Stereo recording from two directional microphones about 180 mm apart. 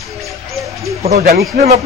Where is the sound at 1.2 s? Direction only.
55° right (ahead or behind).